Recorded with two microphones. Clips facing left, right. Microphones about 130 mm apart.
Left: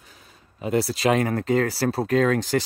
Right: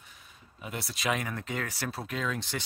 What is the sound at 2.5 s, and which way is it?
Speech, 60° left (ahead or behind).